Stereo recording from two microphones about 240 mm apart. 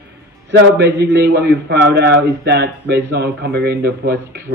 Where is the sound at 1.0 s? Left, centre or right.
Right.